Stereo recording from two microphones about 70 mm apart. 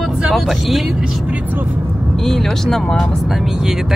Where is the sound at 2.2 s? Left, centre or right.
Centre.